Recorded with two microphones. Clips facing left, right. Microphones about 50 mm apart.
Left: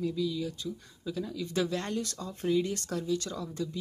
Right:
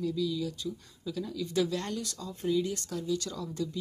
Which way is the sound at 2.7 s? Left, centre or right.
Left.